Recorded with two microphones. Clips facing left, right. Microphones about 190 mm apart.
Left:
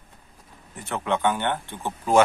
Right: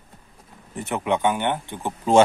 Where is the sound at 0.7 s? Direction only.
20° right (ahead or behind).